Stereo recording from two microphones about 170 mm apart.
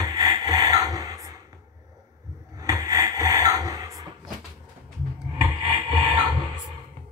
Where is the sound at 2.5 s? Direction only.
20° right (ahead or behind).